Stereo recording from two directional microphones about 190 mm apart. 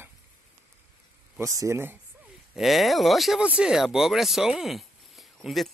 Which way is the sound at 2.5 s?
Centre (ahead or behind).